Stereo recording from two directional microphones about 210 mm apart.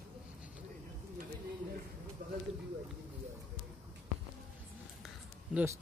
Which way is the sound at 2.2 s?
45° right (ahead or behind).